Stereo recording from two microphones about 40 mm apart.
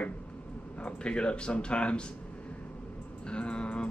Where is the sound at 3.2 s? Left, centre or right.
Left.